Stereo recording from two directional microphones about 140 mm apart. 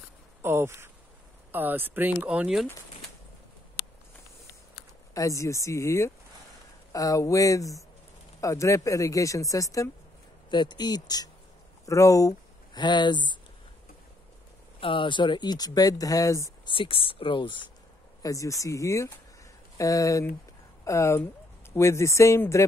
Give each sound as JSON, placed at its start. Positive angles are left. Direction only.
{"t": 0.4, "sound": "speech", "side_deg": -15}
{"t": 5.1, "sound": "speech", "side_deg": 20}
{"t": 14.8, "sound": "speech", "side_deg": 40}
{"t": 16.6, "sound": "speech", "side_deg": 40}
{"t": 18.2, "sound": "speech", "side_deg": 25}